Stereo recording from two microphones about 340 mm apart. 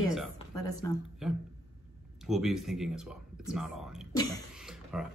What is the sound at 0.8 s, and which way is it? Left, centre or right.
Speech, centre.